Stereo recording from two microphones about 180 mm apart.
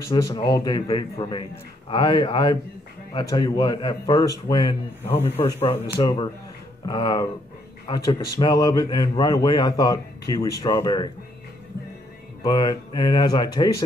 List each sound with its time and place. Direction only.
0.0 s a man's voice: 20° left (ahead or behind)
5.9 s a man's voice: 25° left (ahead or behind)
12.4 s a man's voice: 25° left (ahead or behind)